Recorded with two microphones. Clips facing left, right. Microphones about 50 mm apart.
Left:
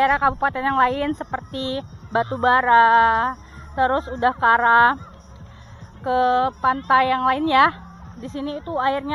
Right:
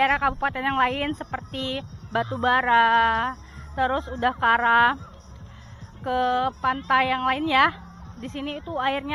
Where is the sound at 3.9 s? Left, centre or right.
Left.